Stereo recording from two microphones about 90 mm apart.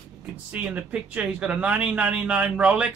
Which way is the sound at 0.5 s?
15° right (ahead or behind).